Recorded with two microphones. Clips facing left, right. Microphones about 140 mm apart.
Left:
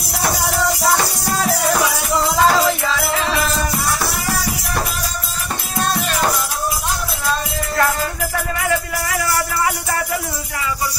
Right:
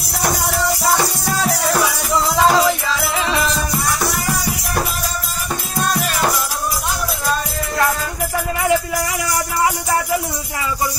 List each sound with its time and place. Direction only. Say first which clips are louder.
0.8 s music: even; centre (ahead or behind)
5.8 s music: even; 5° right (ahead or behind)
8.6 s music: right 6 dB; 20° right (ahead or behind)